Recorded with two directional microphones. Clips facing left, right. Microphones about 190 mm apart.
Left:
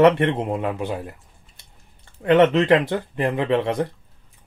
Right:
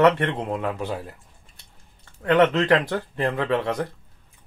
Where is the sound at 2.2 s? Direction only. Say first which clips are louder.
Left 3 dB; 20° left (ahead or behind).